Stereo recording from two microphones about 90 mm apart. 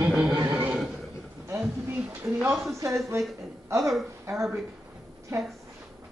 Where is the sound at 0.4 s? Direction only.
20° right (ahead or behind).